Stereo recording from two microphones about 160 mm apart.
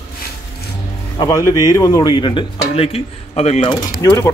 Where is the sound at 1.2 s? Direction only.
25° left (ahead or behind); by 3.7 s 40° left (ahead or behind).